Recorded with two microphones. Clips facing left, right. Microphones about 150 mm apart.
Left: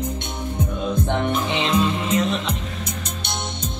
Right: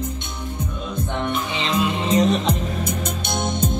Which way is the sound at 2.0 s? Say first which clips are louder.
Right 4 dB; 35° right (ahead or behind).